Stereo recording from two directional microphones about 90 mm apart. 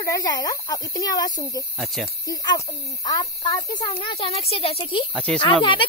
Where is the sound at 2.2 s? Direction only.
40° left (ahead or behind); by 4.8 s 90° left.